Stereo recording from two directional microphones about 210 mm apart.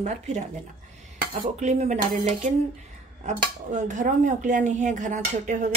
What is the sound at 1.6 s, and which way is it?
Speech, 35° right (ahead or behind).